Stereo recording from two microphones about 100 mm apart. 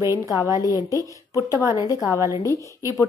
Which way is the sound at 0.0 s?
30° right (ahead or behind).